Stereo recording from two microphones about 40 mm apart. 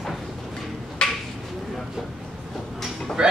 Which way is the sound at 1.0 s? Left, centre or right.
Left.